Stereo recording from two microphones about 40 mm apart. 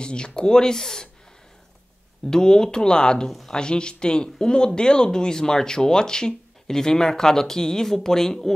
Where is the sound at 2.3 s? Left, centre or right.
Centre.